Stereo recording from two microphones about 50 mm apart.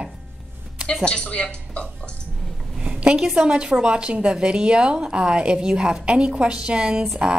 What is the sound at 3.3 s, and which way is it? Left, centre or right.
A woman's voice, centre.